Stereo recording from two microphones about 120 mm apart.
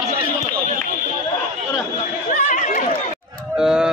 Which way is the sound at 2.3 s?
90° left.